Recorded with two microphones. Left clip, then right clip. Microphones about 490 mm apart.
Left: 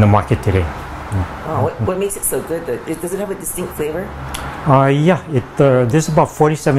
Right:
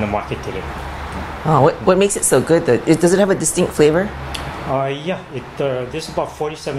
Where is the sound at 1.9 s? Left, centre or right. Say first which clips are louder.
Right 6 dB; right.